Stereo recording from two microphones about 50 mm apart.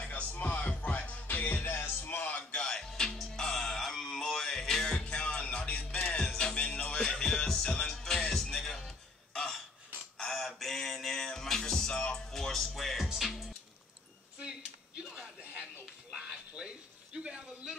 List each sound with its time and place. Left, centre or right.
0.0 s music: left
1.5 s music: left
2.5 s music: centre
4.9 s music: centre
14.4 s a sound: centre
15.4 s music: right
16.1 s a sound: centre